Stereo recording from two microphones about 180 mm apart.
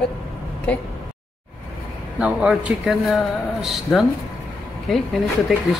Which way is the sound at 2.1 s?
5° right (ahead or behind).